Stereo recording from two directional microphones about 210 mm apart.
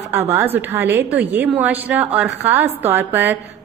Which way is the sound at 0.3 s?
10° right (ahead or behind).